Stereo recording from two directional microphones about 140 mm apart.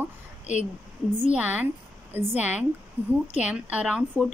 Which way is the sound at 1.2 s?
10° right (ahead or behind).